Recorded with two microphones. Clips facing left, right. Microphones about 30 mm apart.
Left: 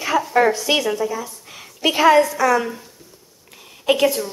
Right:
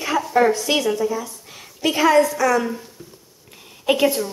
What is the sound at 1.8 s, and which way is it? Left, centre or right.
Speech, left.